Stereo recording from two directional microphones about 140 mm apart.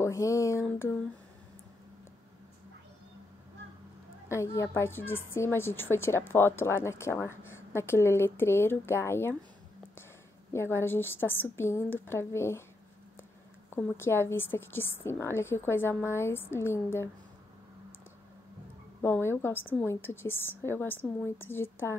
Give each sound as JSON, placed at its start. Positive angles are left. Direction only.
{"t": 0.0, "sound": "a sound", "side_deg": 20}
{"t": 4.3, "sound": "a woman's voice", "side_deg": 20}
{"t": 10.5, "sound": "a woman's voice", "side_deg": 20}
{"t": 13.7, "sound": "a woman's voice", "side_deg": 15}
{"t": 18.9, "sound": "a woman's voice", "side_deg": 15}